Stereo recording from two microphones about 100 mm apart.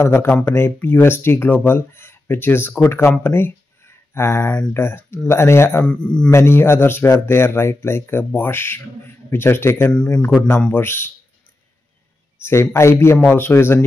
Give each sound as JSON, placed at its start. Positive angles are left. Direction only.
{"t": 0.0, "sound": "speech", "side_deg": 30}
{"t": 5.9, "sound": "speech", "side_deg": 10}
{"t": 6.3, "sound": "speech", "side_deg": 25}
{"t": 9.9, "sound": "speech", "side_deg": 10}
{"t": 12.4, "sound": "speech", "side_deg": 25}